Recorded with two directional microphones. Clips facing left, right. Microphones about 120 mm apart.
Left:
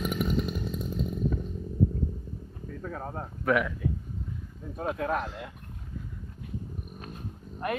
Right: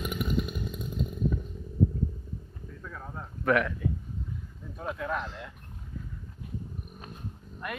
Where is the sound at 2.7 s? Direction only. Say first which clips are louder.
Left 6 dB; 50° left (ahead or behind).